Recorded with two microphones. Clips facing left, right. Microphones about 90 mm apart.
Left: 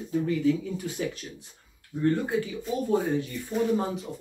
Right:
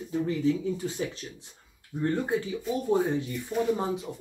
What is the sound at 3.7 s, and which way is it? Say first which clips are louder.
Speech: left 2 dB; 20° right (ahead or behind).